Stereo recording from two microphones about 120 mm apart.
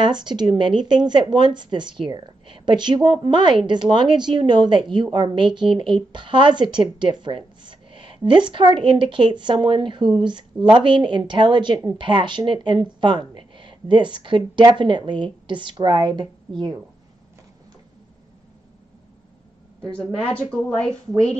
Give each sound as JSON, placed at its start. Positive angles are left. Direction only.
{"t": 0.0, "sound": "speech", "side_deg": -40}
{"t": 19.8, "sound": "a woman's voice", "side_deg": 5}